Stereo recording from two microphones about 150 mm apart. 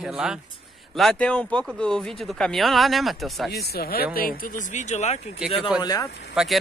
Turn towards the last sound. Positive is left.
turn(degrees=-5)  # may be behind; listen again after turning